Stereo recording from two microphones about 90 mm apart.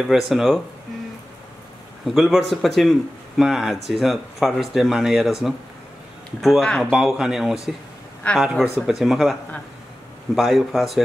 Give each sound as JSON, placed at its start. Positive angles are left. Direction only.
{"t": 0.0, "sound": "speech", "side_deg": -5}
{"t": 2.0, "sound": "speech", "side_deg": 0}
{"t": 8.2, "sound": "speech", "side_deg": 15}
{"t": 8.8, "sound": "speech", "side_deg": -5}